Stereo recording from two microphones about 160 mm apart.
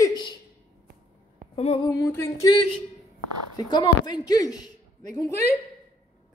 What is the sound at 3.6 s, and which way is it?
Speech, 25° left (ahead or behind).